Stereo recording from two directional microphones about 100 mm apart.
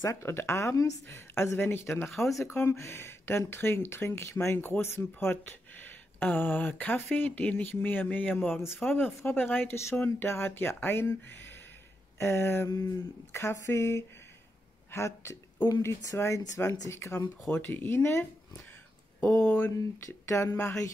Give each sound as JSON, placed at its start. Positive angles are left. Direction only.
{"t": 0.0, "sound": "speech", "side_deg": 30}
{"t": 2.1, "sound": "speech", "side_deg": 0}
{"t": 2.4, "sound": "speech", "side_deg": 25}
{"t": 8.5, "sound": "speech", "side_deg": 0}
{"t": 8.8, "sound": "speech", "side_deg": 20}
{"t": 12.2, "sound": "speech", "side_deg": 25}
{"t": 14.9, "sound": "a sound", "side_deg": 30}
{"t": 15.8, "sound": "speech", "side_deg": 30}
{"t": 19.4, "sound": "speech", "side_deg": 15}
{"t": 20.1, "sound": "speech", "side_deg": 30}